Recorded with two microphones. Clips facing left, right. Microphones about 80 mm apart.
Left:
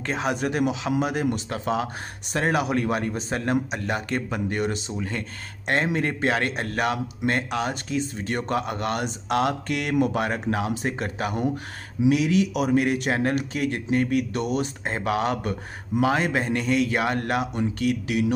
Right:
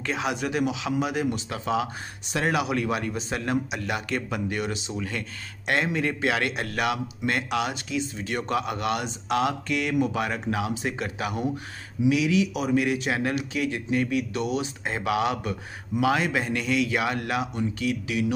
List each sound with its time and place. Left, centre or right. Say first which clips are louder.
0.0 s speech: left 2 dB; left